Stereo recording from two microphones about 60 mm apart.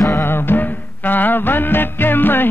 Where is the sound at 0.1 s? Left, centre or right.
Left.